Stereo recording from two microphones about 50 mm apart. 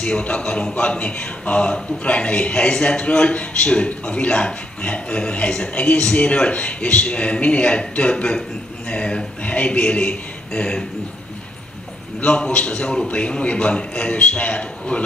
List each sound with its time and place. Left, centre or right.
0.0 s a man's voice: left
12.2 s a man's voice: left